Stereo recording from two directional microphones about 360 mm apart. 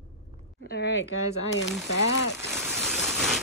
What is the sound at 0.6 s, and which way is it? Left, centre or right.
Speech, left.